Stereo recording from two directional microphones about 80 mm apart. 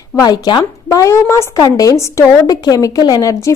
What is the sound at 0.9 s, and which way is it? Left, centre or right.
A woman's voice, left.